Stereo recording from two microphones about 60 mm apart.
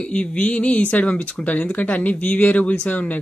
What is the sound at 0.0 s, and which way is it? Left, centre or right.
Speech, centre.